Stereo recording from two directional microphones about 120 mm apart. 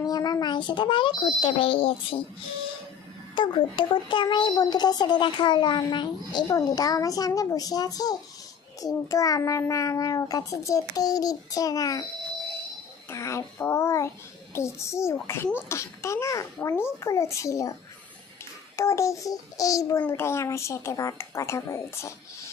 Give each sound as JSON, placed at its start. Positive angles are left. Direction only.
{"t": 0.0, "sound": "a child's voice", "side_deg": 30}
{"t": 3.3, "sound": "a child's voice", "side_deg": 40}
{"t": 13.1, "sound": "a child's voice", "side_deg": 25}
{"t": 18.8, "sound": "a child's voice", "side_deg": 25}